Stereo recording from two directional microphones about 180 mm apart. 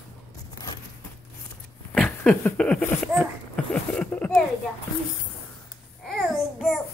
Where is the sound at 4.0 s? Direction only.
5° left (ahead or behind).